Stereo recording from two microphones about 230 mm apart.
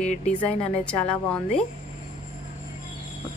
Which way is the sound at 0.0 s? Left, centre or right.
Left.